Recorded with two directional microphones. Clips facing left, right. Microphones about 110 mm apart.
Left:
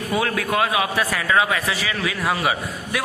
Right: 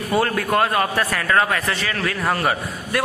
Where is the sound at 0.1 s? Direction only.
Centre (ahead or behind).